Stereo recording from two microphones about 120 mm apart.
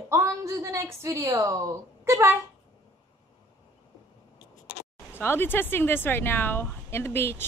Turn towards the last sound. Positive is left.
turn(degrees=20)  # may be behind; listen again after turning